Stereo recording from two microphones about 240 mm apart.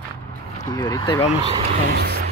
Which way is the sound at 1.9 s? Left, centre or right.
Right.